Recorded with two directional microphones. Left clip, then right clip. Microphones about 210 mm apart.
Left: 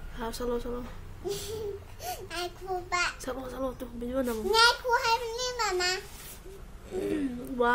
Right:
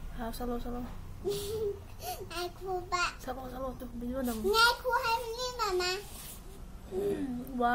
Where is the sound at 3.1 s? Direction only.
40° left (ahead or behind).